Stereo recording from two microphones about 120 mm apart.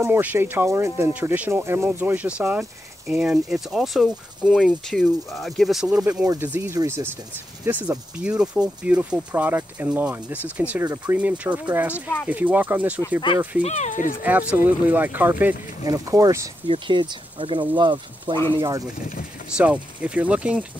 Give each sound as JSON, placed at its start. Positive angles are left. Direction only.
{"t": 0.0, "sound": "speech", "side_deg": -15}
{"t": 6.4, "sound": "speech", "side_deg": -15}
{"t": 11.9, "sound": "speech", "side_deg": 15}
{"t": 12.3, "sound": "speech", "side_deg": -10}
{"t": 13.6, "sound": "speech", "side_deg": 80}
{"t": 14.2, "sound": "speech", "side_deg": -15}
{"t": 15.8, "sound": "speech", "side_deg": -30}
{"t": 16.8, "sound": "speech", "side_deg": -40}
{"t": 19.5, "sound": "speech", "side_deg": -10}